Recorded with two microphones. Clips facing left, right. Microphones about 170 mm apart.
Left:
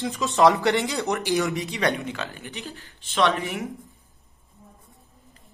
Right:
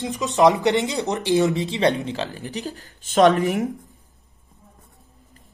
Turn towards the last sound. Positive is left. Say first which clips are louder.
# right 7 dB
turn(degrees=-40)  # may be behind; listen again after turning